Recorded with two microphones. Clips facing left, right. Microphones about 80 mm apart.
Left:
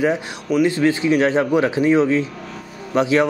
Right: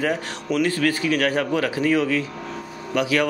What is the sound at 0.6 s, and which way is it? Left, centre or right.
A man's voice, left.